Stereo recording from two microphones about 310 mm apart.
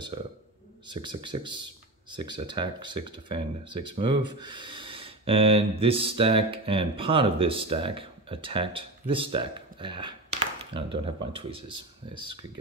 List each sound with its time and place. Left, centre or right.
0.8 s speech: centre
11.3 s speech: right